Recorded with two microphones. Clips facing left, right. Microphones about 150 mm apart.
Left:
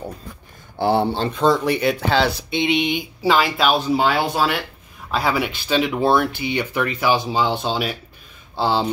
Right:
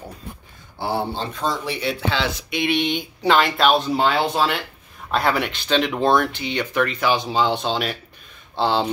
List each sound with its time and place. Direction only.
0.7 s speech: 70° left (ahead or behind); by 2.6 s 35° left (ahead or behind)
2.6 s speech: 15° left (ahead or behind)